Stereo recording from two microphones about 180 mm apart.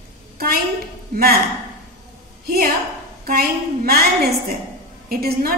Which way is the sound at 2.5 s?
55° right (ahead or behind).